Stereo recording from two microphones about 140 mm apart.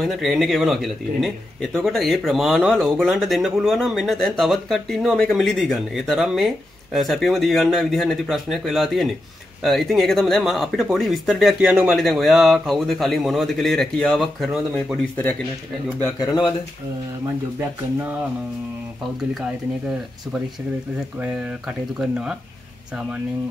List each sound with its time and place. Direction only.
0.0 s speech: centre (ahead or behind)
16.2 s speech: 30° left (ahead or behind)
19.4 s speech: 5° right (ahead or behind)